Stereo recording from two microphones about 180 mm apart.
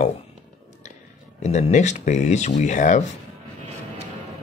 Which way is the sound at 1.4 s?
40° left (ahead or behind).